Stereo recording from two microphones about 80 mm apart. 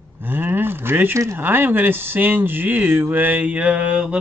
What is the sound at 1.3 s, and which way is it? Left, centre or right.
Speech, right.